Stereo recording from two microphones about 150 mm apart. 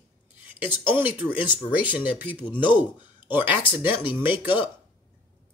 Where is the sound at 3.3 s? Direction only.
10° right (ahead or behind).